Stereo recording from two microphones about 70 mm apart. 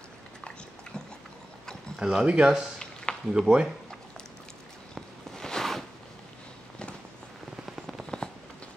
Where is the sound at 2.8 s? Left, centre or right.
Centre.